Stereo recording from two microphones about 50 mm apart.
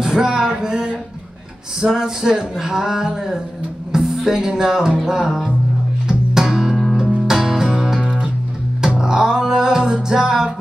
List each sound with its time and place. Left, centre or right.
0.0 s a sound: centre
3.9 s speech: centre
6.0 s music: centre